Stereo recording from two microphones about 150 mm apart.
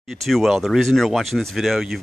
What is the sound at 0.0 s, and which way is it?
Speech, centre (ahead or behind).